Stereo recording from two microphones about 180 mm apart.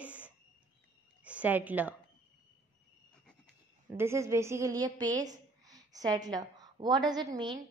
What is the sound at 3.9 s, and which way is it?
A woman's voice, 15° right (ahead or behind).